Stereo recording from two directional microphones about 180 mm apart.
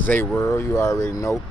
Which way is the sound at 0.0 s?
10° left (ahead or behind).